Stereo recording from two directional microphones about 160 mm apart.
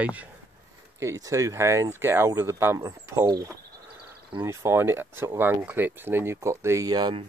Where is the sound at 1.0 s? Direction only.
20° right (ahead or behind).